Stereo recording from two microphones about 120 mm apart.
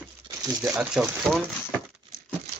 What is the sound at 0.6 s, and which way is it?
Speech, 15° right (ahead or behind).